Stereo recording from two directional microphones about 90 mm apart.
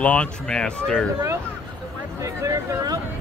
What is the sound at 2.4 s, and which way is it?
Speech, 40° right (ahead or behind).